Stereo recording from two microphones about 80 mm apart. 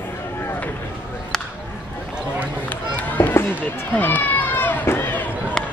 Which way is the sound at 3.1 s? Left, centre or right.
Left.